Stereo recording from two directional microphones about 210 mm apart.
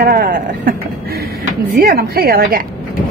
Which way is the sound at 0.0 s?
45° right (ahead or behind).